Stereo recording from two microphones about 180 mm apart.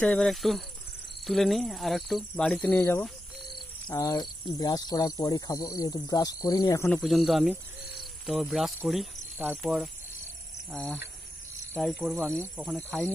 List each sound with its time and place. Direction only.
0.0 s speech: 5° left (ahead or behind)
6.9 s speech: centre (ahead or behind)
8.0 s insect: centre (ahead or behind)
9.6 s speech: centre (ahead or behind)